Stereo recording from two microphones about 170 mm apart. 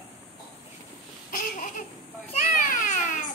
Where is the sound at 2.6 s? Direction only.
50° left (ahead or behind).